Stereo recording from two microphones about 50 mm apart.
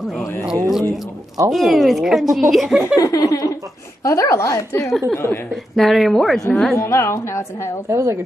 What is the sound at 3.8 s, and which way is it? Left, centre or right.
A woman's voice, left.